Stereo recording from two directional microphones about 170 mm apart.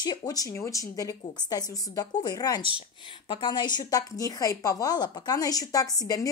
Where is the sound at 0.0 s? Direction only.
25° left (ahead or behind).